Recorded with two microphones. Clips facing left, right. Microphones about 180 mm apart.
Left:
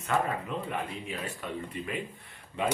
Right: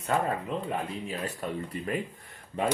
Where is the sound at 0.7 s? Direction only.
35° right (ahead or behind).